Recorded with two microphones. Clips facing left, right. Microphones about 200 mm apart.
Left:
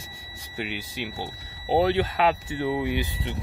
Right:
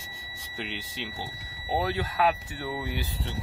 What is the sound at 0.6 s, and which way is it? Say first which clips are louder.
Speech: left 4 dB; 10° left (ahead or behind).